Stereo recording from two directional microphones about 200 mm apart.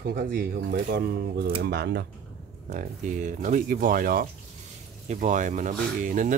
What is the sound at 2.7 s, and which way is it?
Speech, 40° right (ahead or behind).